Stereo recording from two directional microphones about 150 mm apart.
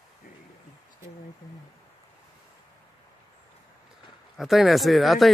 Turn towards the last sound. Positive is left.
turn(degrees=0)  # may be behind; listen again after turning